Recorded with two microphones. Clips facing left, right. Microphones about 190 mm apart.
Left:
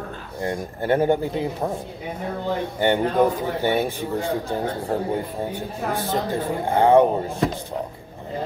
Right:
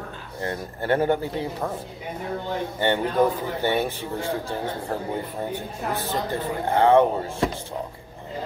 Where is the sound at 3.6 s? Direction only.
15° left (ahead or behind).